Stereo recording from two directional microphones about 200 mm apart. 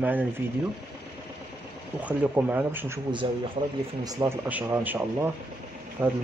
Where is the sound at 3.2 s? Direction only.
25° right (ahead or behind).